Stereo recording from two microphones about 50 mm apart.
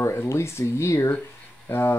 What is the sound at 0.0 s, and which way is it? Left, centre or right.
Speech, left.